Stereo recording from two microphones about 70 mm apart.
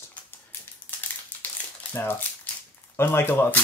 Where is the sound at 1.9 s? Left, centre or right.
Left.